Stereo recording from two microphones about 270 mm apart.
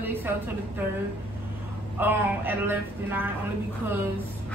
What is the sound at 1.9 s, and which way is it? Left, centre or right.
A woman's voice, centre.